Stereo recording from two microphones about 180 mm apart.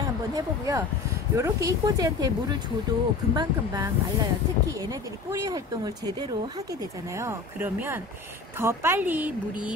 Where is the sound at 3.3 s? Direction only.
25° right (ahead or behind).